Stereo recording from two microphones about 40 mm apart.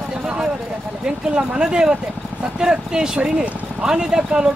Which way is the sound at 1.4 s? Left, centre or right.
Centre.